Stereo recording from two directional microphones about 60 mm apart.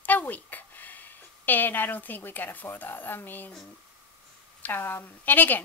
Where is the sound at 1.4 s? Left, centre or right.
Left.